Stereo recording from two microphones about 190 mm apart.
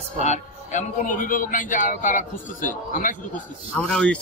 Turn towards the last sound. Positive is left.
turn(degrees=5)  # may be behind; listen again after turning